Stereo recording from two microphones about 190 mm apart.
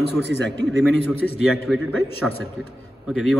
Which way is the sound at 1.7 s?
Centre (ahead or behind).